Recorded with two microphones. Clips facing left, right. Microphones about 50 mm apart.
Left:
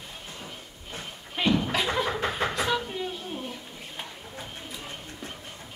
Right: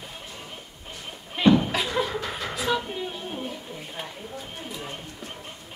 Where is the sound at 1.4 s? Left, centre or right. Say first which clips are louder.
Right 5 dB; centre.